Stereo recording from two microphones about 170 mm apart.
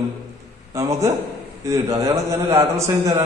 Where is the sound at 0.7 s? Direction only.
20° right (ahead or behind).